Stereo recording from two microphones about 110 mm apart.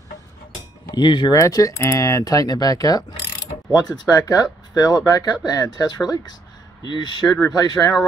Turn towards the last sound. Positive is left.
turn(degrees=35)  # may be behind; listen again after turning